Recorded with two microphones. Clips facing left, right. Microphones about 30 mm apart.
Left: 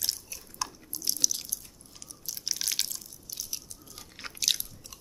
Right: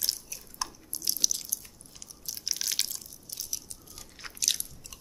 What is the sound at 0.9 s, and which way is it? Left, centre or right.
Drip, centre.